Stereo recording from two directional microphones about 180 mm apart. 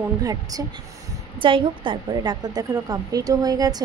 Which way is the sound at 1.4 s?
30° right (ahead or behind).